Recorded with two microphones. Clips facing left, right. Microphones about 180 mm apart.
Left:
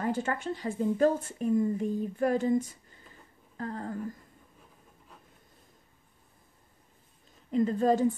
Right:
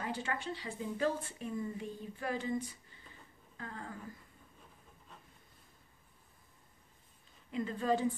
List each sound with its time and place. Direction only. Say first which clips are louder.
0.0 s a woman's voice: left 8 dB; 45° left (ahead or behind)
7.5 s a woman's voice: left 8 dB; 40° left (ahead or behind)